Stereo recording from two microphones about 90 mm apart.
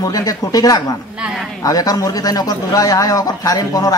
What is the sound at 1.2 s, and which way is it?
Speech, 5° right (ahead or behind).